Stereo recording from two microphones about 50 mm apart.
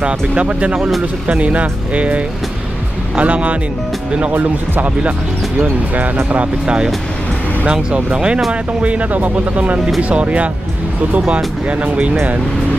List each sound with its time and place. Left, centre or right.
0.0 s speech: right
0.7 s speech: centre
1.2 s speech: right
7.6 s speech: right